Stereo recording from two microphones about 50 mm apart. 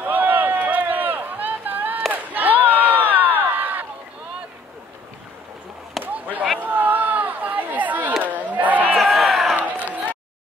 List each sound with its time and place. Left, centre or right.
0.0 s run: right
2.3 s a sound: right
6.1 s a sound: right
6.6 s chatter: right
8.2 s battle cry: right
8.9 s crowd: centre
9.6 s run: right